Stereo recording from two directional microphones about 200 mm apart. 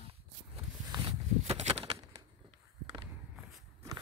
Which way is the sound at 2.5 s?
25° right (ahead or behind).